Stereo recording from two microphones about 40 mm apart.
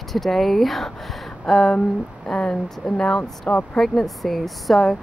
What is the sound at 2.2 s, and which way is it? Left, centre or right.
Speech, left.